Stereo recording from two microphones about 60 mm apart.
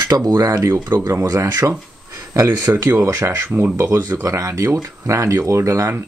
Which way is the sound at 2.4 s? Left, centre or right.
Right.